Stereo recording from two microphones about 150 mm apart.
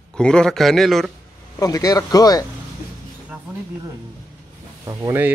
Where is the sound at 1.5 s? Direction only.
25° left (ahead or behind).